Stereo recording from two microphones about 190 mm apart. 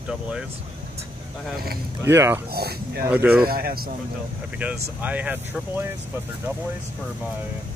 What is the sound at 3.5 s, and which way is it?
Speech, 50° right (ahead or behind).